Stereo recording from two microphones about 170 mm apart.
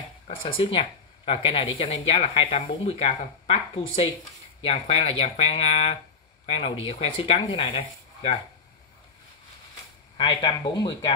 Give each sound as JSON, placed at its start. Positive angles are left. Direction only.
{"t": 0.4, "sound": "speech", "side_deg": 30}
{"t": 10.1, "sound": "speech", "side_deg": 30}